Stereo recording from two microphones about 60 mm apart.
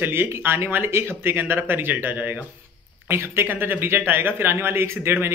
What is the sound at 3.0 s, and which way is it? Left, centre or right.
Speech, right.